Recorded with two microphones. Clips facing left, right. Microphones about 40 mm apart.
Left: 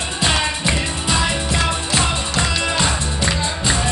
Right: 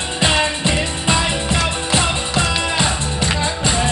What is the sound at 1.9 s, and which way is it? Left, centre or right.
Music, centre.